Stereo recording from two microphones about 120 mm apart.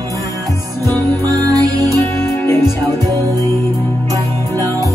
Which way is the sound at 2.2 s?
20° left (ahead or behind).